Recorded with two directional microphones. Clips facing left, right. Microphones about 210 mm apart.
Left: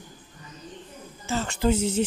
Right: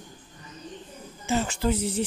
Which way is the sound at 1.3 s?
15° right (ahead or behind).